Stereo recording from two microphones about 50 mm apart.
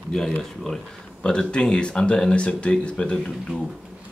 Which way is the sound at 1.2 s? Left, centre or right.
Centre.